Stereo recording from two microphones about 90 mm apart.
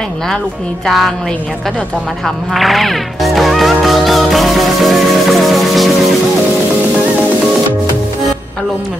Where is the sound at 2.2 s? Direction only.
Centre (ahead or behind).